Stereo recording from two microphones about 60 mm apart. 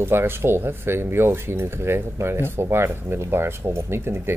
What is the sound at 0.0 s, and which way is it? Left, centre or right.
A man's voice, right.